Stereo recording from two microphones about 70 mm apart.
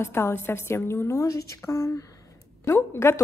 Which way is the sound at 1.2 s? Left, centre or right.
Left.